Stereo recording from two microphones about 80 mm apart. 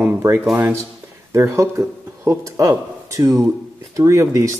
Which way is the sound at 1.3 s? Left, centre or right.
Right.